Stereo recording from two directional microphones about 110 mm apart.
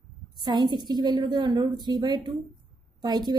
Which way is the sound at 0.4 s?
45° right (ahead or behind).